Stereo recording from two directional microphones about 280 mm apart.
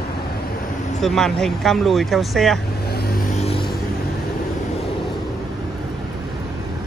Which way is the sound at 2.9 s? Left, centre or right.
Left.